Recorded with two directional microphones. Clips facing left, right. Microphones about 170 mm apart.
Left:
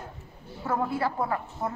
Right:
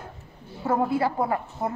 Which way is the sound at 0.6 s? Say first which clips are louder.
Right 4 dB; 30° right (ahead or behind).